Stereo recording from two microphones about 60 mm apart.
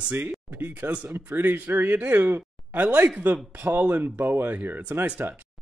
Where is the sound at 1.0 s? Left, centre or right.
Right.